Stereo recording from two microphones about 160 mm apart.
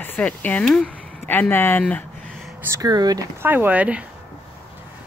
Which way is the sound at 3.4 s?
10° right (ahead or behind).